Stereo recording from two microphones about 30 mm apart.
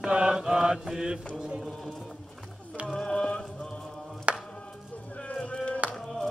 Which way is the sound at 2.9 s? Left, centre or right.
Centre.